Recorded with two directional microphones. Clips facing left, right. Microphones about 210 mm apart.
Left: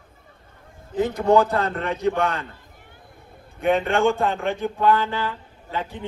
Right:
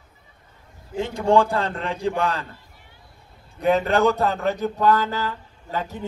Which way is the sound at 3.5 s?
35° right (ahead or behind).